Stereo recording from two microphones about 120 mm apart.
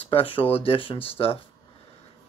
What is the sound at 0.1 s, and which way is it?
Speech, 50° left (ahead or behind).